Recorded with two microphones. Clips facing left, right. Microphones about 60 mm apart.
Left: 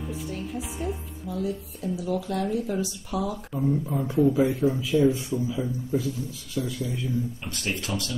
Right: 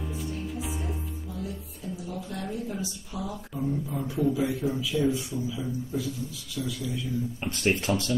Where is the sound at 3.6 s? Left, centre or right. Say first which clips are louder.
Left 4 dB; left.